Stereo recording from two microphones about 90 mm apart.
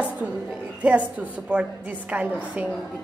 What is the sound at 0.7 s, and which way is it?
A woman's voice, 15° right (ahead or behind).